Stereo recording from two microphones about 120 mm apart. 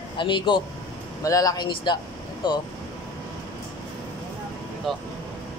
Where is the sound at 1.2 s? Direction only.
30° left (ahead or behind).